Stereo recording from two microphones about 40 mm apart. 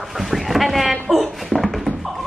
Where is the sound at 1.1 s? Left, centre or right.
Centre.